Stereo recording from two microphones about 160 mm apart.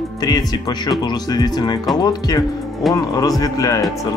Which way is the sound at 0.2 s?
25° left (ahead or behind).